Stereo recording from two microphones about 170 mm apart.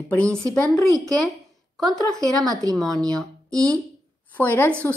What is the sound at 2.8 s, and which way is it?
Speech, 5° left (ahead or behind).